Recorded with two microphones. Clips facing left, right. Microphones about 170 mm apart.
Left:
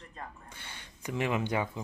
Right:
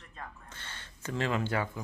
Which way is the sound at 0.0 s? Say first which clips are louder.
Left 1 dB; 30° left (ahead or behind).